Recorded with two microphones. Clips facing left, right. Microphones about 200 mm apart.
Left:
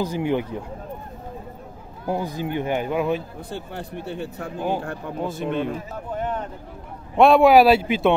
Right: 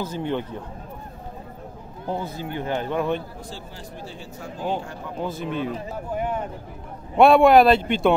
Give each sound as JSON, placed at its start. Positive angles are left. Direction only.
{"t": 0.0, "sound": "speech", "side_deg": 10}
{"t": 2.0, "sound": "speech", "side_deg": 10}
{"t": 3.4, "sound": "speech", "side_deg": 60}
{"t": 5.2, "sound": "speech", "side_deg": 0}